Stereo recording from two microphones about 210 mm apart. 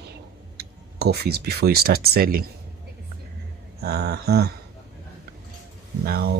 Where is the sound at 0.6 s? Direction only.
50° right (ahead or behind).